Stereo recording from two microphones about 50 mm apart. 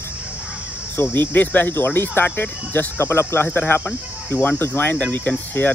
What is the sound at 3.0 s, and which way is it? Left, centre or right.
Speech, left.